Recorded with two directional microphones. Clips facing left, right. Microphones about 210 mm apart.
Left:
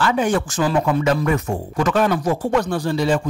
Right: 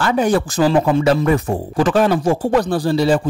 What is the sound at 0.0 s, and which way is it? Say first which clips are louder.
Speech: right 3 dB; 40° right (ahead or behind).